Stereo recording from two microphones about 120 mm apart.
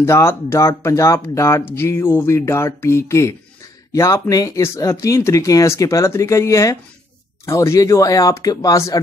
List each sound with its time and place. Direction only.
0.0 s speech: 20° left (ahead or behind)